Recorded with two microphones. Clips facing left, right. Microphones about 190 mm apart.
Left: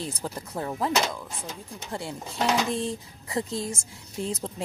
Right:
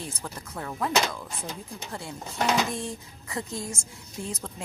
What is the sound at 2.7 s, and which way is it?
A woman's voice, 25° left (ahead or behind).